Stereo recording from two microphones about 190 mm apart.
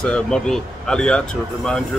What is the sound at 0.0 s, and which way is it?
Speech, 5° left (ahead or behind).